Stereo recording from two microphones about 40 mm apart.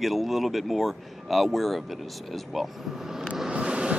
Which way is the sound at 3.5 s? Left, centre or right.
Right.